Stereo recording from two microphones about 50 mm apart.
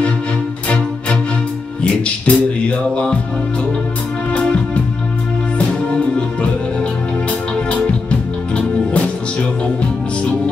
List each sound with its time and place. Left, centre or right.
1.8 s music: left
4.3 s music: left
6.1 s music: centre